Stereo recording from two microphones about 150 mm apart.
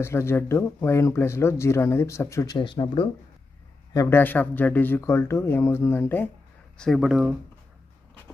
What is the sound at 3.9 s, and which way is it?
Speech, 20° left (ahead or behind).